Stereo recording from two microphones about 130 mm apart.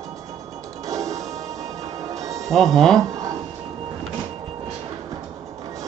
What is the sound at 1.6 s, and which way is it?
Music, 55° right (ahead or behind).